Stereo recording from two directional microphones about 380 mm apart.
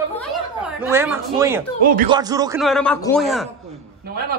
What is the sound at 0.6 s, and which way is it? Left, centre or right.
A man's voice, centre.